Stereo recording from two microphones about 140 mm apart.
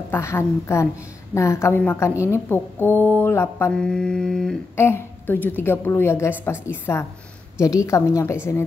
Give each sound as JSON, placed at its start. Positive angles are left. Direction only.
{"t": 0.1, "sound": "a woman's voice", "side_deg": 20}
{"t": 3.7, "sound": "mantra", "side_deg": 5}
{"t": 4.7, "sound": "a woman's voice", "side_deg": 15}